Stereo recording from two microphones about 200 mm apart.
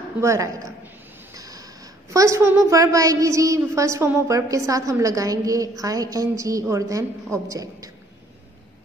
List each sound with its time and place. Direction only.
0.2 s speech: 15° right (ahead or behind)